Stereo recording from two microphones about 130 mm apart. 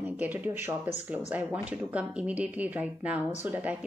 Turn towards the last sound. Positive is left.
turn(degrees=-15)  # may be behind; listen again after turning